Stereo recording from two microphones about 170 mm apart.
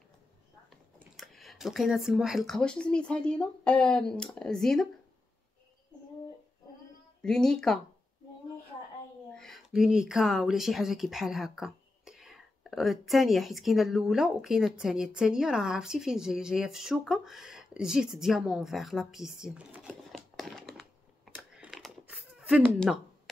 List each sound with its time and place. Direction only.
0.9 s speech: centre (ahead or behind)
7.2 s speech: 5° left (ahead or behind)
9.3 s speech: centre (ahead or behind)
19.9 s a sound: centre (ahead or behind)
21.5 s computer keyboard: centre (ahead or behind)